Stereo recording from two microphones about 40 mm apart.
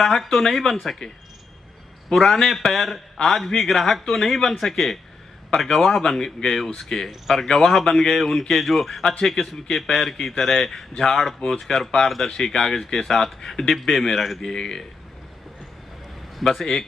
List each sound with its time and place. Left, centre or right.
0.0 s speech: centre
2.0 s speech: centre
13.7 s speech: centre
14.4 s speech: centre
16.3 s speech: centre